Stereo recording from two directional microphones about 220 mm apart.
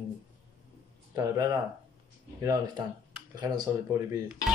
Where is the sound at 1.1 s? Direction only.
15° right (ahead or behind).